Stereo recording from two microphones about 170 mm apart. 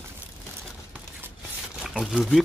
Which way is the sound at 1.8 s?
5° right (ahead or behind).